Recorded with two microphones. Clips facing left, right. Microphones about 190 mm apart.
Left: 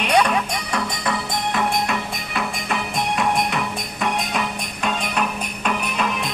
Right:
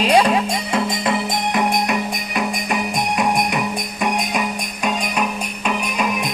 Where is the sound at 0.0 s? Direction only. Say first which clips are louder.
Right 4 dB; 30° right (ahead or behind).